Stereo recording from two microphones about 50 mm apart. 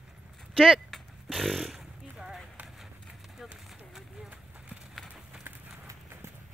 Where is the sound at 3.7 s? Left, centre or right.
Centre.